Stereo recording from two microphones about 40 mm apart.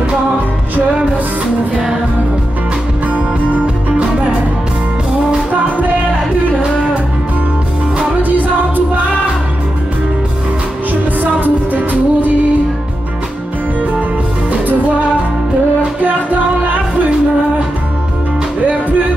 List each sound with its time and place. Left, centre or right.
11.3 s music: right
16.0 s music: right
18.7 s music: right